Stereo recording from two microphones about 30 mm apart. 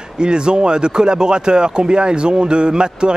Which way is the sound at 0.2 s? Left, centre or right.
Right.